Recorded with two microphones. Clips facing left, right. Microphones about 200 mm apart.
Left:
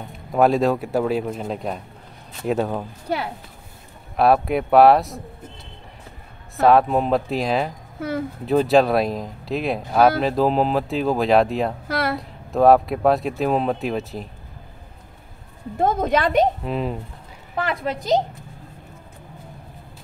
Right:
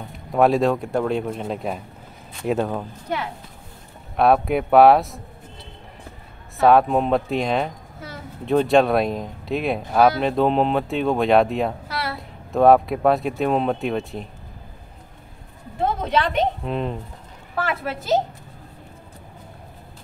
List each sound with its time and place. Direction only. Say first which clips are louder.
0.1 s speech: even; centre (ahead or behind)
4.2 s speech: even; centre (ahead or behind)
6.5 s speech: even; centre (ahead or behind)
11.9 s a sound: left 6 dB; 55° left (ahead or behind)
12.2 s speech: right 4 dB; centre (ahead or behind)
15.8 s a woman's voice: left 3 dB; 45° left (ahead or behind)
16.6 s speech: left 1 dB; centre (ahead or behind)
17.6 s a woman's voice: left 1 dB; 15° left (ahead or behind)